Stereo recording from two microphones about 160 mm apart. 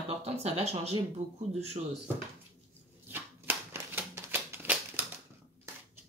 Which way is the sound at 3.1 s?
15° right (ahead or behind).